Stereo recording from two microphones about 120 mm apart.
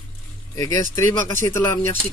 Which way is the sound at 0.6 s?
30° left (ahead or behind).